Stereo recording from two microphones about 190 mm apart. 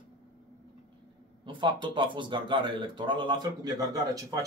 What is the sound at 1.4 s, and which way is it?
A man's voice, 25° right (ahead or behind).